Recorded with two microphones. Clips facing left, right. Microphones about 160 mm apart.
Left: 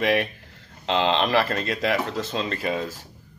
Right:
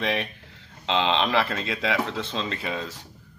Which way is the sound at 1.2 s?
45° left (ahead or behind).